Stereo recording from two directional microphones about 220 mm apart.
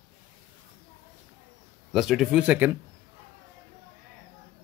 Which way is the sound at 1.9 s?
Centre (ahead or behind).